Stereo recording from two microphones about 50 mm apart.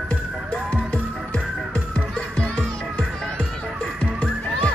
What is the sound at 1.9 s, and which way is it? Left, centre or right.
Music, left.